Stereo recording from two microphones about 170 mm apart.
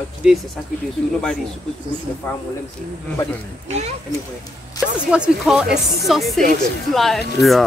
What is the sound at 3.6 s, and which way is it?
Speech, 40° right (ahead or behind).